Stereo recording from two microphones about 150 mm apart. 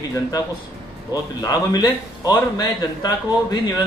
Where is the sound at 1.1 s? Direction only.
25° left (ahead or behind).